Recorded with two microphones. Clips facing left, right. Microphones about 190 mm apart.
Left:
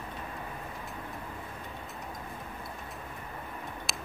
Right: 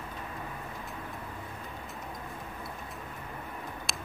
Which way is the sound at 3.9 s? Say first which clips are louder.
Left 1 dB; centre (ahead or behind).